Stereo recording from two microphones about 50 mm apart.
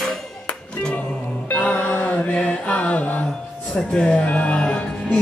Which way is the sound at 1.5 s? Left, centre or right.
Left.